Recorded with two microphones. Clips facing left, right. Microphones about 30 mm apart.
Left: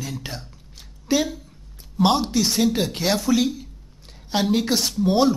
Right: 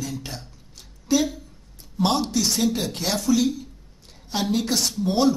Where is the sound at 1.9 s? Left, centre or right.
Centre.